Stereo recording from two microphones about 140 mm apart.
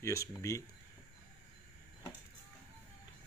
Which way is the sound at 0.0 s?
20° left (ahead or behind).